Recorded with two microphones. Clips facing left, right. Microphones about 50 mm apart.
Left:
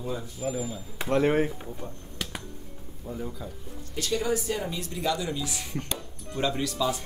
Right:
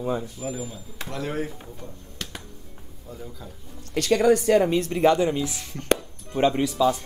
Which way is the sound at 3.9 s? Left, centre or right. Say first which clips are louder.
Right 9 dB; right.